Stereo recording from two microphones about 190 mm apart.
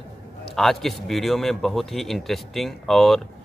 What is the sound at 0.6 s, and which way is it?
Speech, centre (ahead or behind).